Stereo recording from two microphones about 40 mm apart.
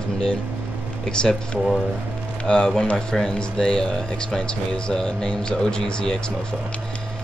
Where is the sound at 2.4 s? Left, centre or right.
Left.